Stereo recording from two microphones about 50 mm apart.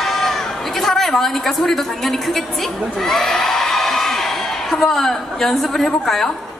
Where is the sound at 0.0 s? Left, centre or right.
Centre.